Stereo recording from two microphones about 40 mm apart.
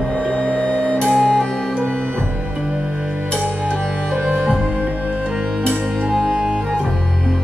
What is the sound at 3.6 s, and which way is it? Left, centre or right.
Music, left.